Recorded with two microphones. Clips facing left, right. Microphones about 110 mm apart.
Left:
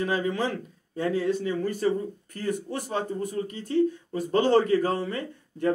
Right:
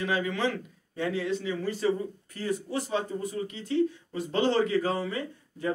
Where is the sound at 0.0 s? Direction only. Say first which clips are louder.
Left 2 dB; 40° left (ahead or behind).